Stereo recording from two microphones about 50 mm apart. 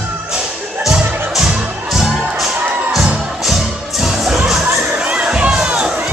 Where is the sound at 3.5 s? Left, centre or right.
Centre.